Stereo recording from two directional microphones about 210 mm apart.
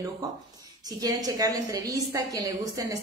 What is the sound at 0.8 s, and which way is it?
A woman's voice, 15° right (ahead or behind).